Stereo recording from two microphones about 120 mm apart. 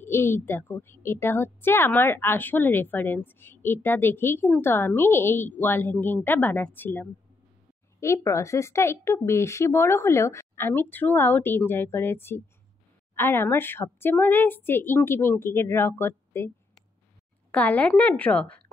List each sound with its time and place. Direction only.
0.0 s a woman's voice: 20° left (ahead or behind)